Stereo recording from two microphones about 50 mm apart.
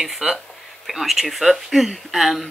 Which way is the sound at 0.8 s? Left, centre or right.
Centre.